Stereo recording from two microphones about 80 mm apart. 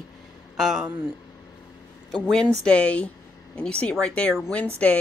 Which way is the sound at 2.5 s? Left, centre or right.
Centre.